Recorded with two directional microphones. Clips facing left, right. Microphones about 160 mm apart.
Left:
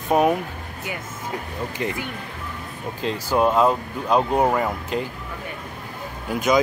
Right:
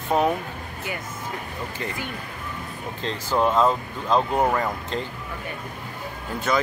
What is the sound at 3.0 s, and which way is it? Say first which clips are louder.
Speech: left 3 dB; 10° left (ahead or behind).